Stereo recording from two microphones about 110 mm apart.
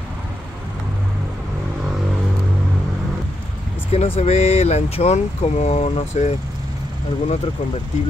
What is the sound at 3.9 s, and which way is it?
Speech, 70° left (ahead or behind).